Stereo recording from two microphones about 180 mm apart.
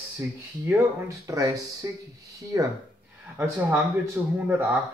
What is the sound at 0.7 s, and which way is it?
Speech, 15° right (ahead or behind).